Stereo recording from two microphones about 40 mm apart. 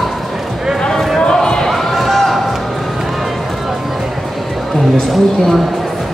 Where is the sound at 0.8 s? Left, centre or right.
Centre.